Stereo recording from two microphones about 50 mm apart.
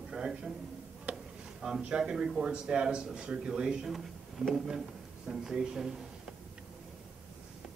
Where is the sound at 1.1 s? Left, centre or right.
Right.